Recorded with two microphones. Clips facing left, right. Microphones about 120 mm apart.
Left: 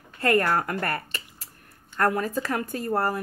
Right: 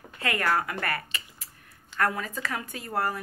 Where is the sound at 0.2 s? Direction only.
45° left (ahead or behind).